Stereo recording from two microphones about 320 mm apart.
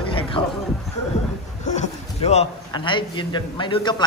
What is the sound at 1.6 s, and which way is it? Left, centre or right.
A man's voice, left.